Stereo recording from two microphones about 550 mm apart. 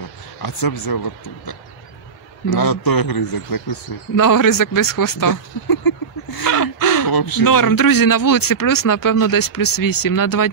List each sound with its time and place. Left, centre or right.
0.4 s speech: left
2.5 s speech: left